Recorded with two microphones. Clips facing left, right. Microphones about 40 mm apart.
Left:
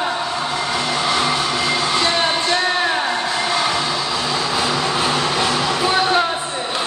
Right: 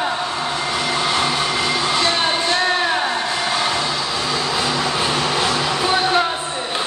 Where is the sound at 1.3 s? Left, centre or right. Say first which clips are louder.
Left 1 dB; centre.